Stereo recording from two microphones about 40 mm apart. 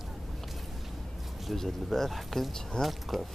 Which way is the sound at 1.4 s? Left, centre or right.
Centre.